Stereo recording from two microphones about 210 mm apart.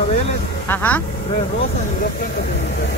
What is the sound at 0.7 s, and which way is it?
Speech, 10° left (ahead or behind).